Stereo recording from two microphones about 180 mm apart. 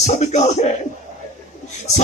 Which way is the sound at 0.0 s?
40° left (ahead or behind).